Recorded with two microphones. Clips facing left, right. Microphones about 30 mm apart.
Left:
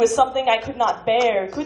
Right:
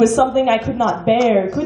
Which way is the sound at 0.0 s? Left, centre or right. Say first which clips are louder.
Right 4 dB; centre.